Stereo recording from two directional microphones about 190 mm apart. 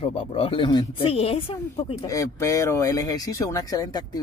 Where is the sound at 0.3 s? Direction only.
30° left (ahead or behind).